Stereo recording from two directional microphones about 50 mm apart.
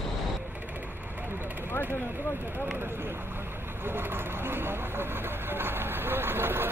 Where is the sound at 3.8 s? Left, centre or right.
Right.